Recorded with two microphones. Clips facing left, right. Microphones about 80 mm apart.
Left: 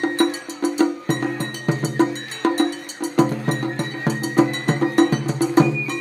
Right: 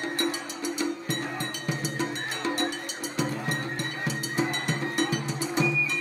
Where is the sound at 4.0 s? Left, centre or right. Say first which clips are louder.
Left 12 dB; left.